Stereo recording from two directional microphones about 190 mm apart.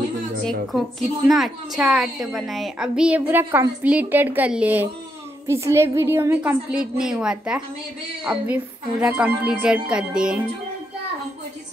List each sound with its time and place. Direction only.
0.5 s a woman's voice: centre (ahead or behind)